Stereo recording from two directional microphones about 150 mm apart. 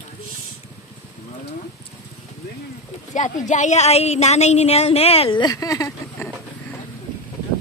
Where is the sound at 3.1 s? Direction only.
55° left (ahead or behind); by 6.3 s 20° left (ahead or behind).